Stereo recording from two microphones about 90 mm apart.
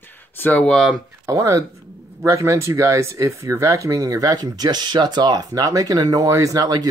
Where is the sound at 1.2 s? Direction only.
35° right (ahead or behind).